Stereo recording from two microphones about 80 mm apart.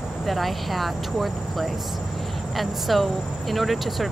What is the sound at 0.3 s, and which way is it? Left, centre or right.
Speech, centre.